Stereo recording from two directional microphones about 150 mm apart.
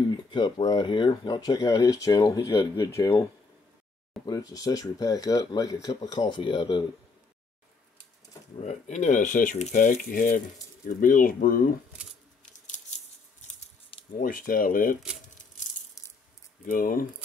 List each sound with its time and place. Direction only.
0.1 s speech: 30° left (ahead or behind)
4.3 s speech: 25° left (ahead or behind)
8.5 s speech: 50° left (ahead or behind); by 11.7 s 70° left (ahead or behind)
12.4 s scissors: 55° left (ahead or behind)
14.2 s speech: 65° left (ahead or behind)
16.6 s speech: 65° left (ahead or behind)